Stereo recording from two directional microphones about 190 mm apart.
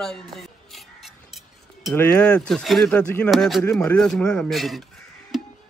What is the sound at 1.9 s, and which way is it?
A man's voice, 5° left (ahead or behind).